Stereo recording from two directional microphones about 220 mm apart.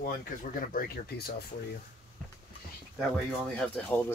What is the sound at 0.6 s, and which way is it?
Speech, 40° left (ahead or behind).